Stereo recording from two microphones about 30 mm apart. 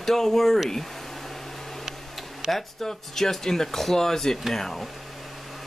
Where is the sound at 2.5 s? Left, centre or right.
Centre.